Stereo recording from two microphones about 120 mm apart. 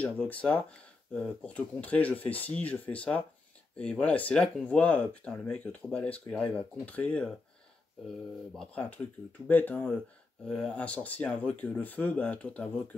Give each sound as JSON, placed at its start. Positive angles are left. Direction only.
{"t": 0.0, "sound": "speech", "side_deg": 10}
{"t": 8.5, "sound": "speech", "side_deg": 10}